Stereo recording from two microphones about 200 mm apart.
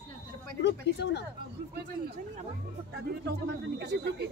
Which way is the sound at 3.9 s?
60° right (ahead or behind).